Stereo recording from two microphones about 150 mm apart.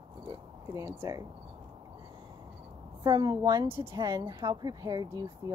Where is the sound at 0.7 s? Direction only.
20° right (ahead or behind).